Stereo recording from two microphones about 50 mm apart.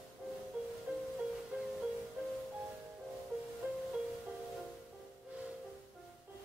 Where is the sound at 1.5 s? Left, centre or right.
Right.